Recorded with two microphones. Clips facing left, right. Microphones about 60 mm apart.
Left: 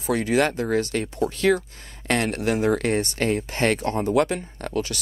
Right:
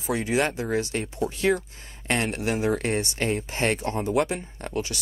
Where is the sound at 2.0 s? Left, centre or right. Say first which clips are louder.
Left 3 dB; left.